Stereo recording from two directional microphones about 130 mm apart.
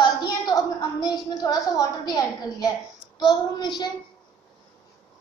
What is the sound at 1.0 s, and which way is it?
A child's voice, 30° left (ahead or behind).